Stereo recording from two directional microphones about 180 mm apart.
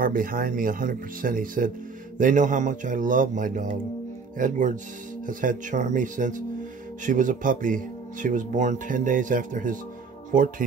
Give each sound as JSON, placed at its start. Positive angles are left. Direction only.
{"t": 0.0, "sound": "speech", "side_deg": -50}